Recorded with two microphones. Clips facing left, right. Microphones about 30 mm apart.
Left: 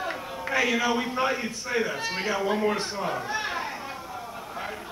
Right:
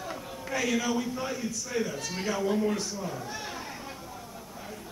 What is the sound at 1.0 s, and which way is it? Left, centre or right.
A man's voice, left.